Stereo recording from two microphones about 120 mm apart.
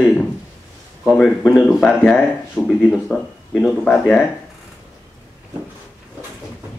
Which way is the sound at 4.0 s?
15° left (ahead or behind).